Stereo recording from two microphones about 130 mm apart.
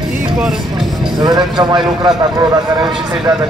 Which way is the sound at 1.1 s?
35° right (ahead or behind).